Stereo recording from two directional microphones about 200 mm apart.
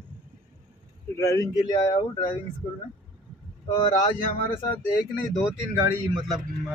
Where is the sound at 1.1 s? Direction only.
15° left (ahead or behind).